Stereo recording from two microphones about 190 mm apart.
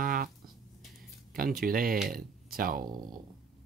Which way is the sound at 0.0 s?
50° right (ahead or behind).